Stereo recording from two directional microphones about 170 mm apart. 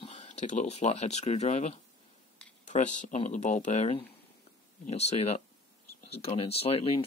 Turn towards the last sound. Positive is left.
turn(degrees=35)  # may be behind; listen again after turning